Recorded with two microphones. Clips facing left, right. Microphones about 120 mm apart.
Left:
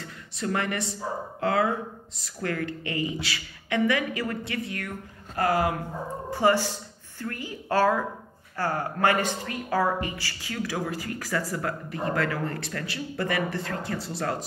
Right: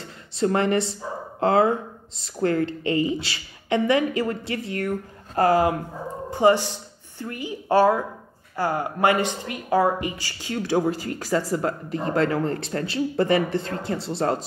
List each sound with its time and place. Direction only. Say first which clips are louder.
0.0 s a woman's voice: right 8 dB; 30° right (ahead or behind)